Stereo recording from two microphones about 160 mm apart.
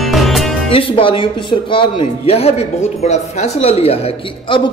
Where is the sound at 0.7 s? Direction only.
35° left (ahead or behind).